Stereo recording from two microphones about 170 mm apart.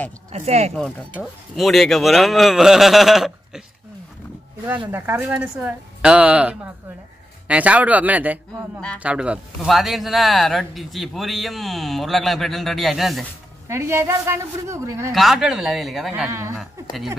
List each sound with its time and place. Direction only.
0.3 s speech: 40° right (ahead or behind)
0.7 s speech: 5° left (ahead or behind)
4.9 s a woman's voice: 15° right (ahead or behind)
13.7 s a woman's voice: 15° right (ahead or behind)
15.1 s speech: centre (ahead or behind)
16.3 s a woman's voice: 15° right (ahead or behind)